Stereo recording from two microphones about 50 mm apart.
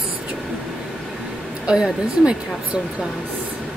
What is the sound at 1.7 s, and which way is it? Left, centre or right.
A woman's voice, centre.